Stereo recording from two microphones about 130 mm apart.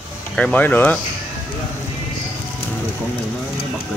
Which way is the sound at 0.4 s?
10° left (ahead or behind).